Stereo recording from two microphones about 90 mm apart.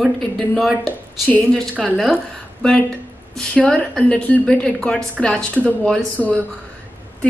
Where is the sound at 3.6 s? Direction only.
10° left (ahead or behind).